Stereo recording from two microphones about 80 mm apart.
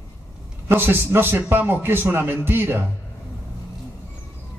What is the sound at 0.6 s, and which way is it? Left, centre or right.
A man's voice, right.